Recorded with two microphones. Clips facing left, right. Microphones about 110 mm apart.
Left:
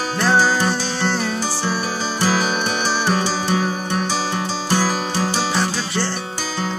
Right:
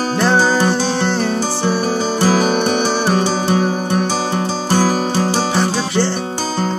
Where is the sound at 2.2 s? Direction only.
50° right (ahead or behind).